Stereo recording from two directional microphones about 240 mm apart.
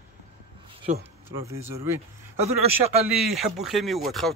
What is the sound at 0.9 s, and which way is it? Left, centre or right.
Speech, right.